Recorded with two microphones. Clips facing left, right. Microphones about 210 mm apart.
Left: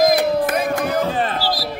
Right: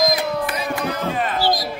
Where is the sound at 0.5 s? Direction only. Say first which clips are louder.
Left 5 dB; 50° left (ahead or behind).